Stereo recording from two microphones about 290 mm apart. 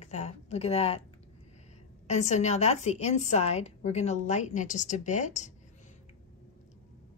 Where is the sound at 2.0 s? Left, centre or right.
Left.